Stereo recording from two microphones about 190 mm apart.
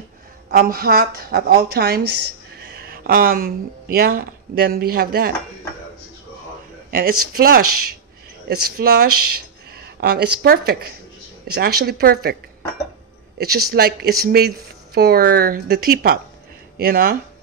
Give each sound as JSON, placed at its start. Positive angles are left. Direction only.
{"t": 0.5, "sound": "a woman's voice", "side_deg": -50}
{"t": 6.9, "sound": "a woman's voice", "side_deg": -50}
{"t": 13.4, "sound": "a woman's voice", "side_deg": -55}